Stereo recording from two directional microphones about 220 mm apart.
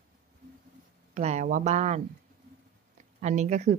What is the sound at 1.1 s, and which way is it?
Speech, 30° right (ahead or behind).